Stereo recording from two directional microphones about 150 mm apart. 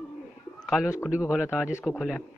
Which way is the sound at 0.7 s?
5° right (ahead or behind).